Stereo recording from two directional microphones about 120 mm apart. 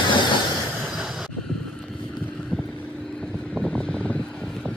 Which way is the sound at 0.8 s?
5° right (ahead or behind).